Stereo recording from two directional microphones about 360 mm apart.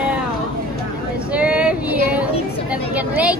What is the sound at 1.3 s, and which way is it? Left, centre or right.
Female singing, centre.